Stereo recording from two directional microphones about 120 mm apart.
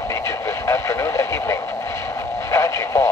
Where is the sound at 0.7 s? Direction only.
25° left (ahead or behind).